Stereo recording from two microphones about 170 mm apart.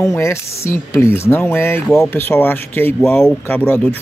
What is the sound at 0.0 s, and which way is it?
A man's voice, 15° left (ahead or behind).